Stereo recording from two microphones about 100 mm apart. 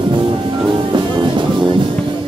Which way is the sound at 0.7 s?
50° right (ahead or behind).